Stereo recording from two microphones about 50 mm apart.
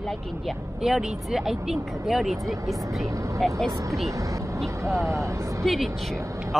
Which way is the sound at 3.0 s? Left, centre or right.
Right.